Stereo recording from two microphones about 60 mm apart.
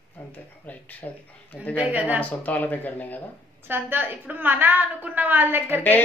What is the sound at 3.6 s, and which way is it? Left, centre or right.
A woman's voice, right.